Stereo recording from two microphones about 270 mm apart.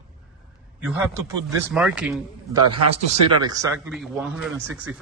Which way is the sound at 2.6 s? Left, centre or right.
Centre.